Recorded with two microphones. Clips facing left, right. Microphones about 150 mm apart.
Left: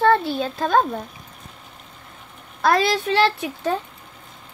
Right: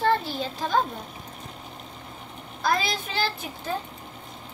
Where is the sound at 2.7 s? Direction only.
70° left (ahead or behind).